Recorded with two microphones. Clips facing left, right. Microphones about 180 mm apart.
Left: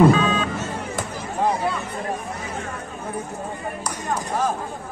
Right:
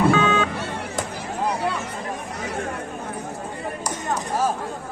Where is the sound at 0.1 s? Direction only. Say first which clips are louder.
Even; 70° right (ahead or behind).